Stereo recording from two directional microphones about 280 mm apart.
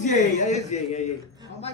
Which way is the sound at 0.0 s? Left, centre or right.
Left.